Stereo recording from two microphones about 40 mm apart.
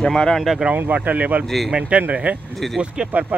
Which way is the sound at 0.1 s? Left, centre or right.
Centre.